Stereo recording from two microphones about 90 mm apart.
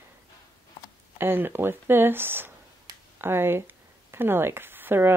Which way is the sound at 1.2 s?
25° right (ahead or behind).